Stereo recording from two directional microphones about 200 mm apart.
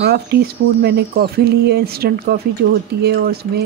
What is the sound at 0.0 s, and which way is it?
Speech, 55° right (ahead or behind).